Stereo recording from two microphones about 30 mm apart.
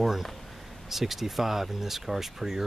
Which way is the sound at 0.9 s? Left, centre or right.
Centre.